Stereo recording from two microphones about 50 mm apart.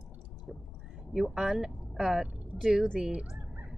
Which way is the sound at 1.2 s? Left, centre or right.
Centre.